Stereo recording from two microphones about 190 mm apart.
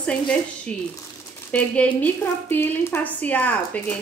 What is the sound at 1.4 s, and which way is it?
A woman's voice, 5° left (ahead or behind).